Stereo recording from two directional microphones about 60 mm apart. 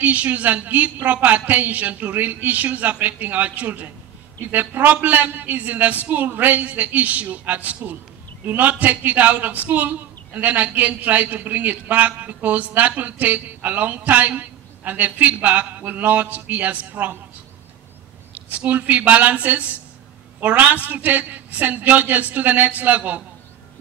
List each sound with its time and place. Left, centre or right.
0.0 s a man's voice: right
18.3 s a man's voice: right